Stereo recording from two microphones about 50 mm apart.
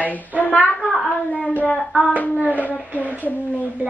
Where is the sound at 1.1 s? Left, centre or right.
Left.